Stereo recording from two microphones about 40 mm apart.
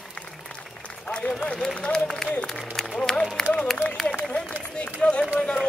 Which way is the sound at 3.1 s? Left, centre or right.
Centre.